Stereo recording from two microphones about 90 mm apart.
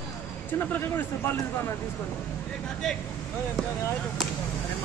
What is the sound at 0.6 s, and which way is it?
Speech, 25° left (ahead or behind).